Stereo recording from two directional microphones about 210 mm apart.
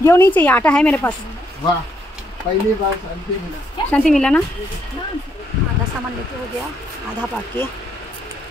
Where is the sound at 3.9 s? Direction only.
5° left (ahead or behind).